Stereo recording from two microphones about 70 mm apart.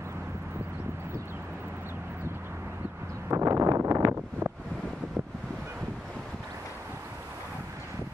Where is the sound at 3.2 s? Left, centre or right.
Right.